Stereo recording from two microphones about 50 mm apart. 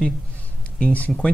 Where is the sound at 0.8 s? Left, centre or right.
Left.